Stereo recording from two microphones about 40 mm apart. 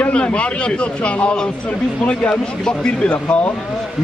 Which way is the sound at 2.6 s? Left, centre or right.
Left.